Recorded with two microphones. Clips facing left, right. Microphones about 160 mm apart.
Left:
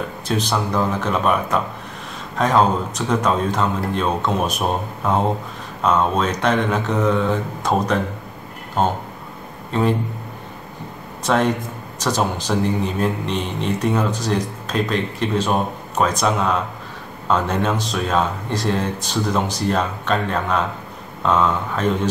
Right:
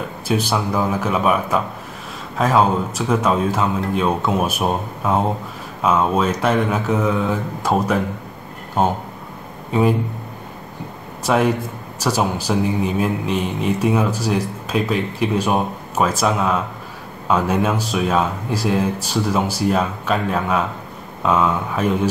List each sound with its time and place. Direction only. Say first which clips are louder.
0.3 s a man's voice: right 2 dB; 10° right (ahead or behind)
11.2 s speech: right 1 dB; 10° right (ahead or behind)